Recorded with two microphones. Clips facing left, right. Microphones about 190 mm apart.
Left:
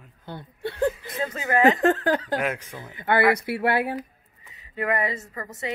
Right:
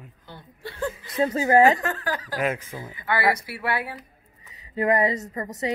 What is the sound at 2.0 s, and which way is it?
Speech, 60° left (ahead or behind).